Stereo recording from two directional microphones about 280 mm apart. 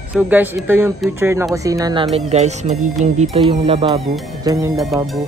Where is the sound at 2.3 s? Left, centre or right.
Right.